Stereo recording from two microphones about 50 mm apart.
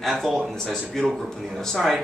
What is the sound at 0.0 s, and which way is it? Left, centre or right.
Speech, centre.